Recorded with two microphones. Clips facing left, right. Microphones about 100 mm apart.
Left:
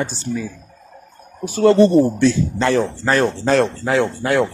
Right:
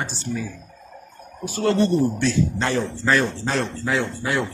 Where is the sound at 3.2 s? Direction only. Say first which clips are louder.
Left 8 dB; 70° left (ahead or behind).